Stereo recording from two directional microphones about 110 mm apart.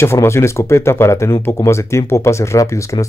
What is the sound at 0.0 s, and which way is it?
Speech, 25° left (ahead or behind).